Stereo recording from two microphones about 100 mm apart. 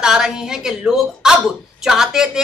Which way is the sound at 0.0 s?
5° right (ahead or behind).